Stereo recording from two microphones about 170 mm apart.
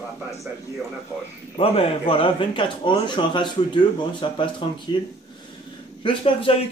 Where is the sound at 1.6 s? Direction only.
35° left (ahead or behind).